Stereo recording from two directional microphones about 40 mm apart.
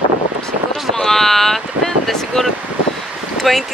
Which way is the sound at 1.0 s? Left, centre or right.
Centre.